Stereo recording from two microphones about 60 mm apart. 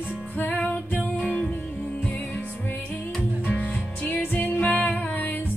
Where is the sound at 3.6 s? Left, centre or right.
Left.